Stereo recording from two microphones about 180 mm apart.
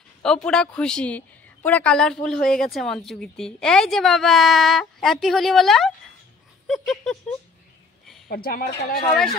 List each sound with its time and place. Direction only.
0.2 s a woman's voice: 5° left (ahead or behind)
8.3 s speech: 55° left (ahead or behind)